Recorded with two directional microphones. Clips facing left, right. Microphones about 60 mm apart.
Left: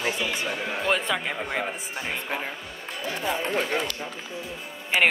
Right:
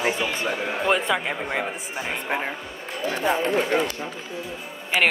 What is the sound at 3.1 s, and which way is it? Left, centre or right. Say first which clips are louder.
Speech: right 5 dB; right.